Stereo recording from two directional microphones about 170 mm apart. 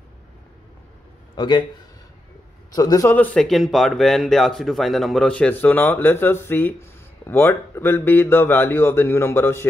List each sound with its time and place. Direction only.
1.3 s a man's voice: 25° left (ahead or behind)
2.7 s speech: 20° left (ahead or behind)